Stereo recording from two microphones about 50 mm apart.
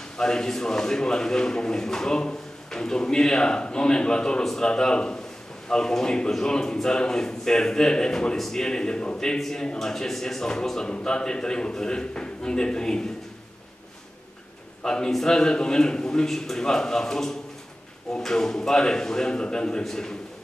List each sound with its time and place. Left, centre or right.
0.2 s a man's voice: centre
8.4 s speech: centre
8.6 s a man's voice: centre
14.8 s a man's voice: centre